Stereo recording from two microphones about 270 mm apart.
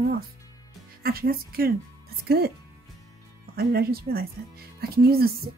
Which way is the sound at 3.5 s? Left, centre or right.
Right.